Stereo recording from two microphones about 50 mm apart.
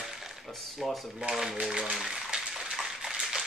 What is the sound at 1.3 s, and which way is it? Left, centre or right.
Speech, centre.